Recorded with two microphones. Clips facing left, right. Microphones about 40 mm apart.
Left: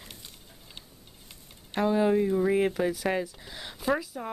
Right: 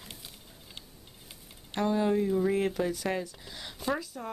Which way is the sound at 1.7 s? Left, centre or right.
Centre.